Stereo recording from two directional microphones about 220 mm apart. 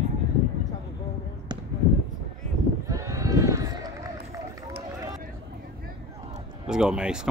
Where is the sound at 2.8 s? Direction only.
15° right (ahead or behind).